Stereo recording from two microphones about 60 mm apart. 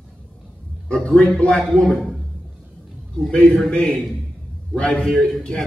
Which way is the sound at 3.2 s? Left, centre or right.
Centre.